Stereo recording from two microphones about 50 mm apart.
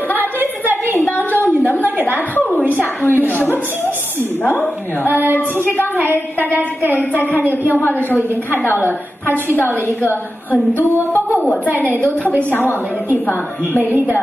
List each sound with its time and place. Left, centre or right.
2.7 s a sound: left
3.1 s a sound: right
5.0 s a woman's voice: right
7.2 s a woman's voice: right
11.7 s a woman's voice: right
12.4 s a woman's voice: left
13.7 s a woman's voice: right